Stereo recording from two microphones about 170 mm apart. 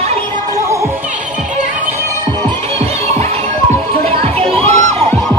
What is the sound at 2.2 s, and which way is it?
Music, 25° right (ahead or behind).